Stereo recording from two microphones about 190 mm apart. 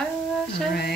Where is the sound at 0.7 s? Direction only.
55° left (ahead or behind).